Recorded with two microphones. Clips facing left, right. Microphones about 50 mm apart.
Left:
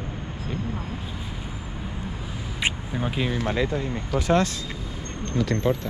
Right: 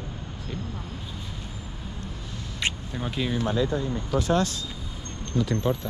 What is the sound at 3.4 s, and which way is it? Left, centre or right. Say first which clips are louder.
Speech: even; left.